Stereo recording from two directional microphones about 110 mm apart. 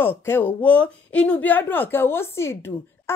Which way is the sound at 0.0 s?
20° left (ahead or behind).